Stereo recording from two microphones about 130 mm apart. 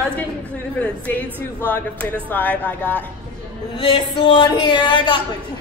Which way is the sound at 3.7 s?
40° left (ahead or behind).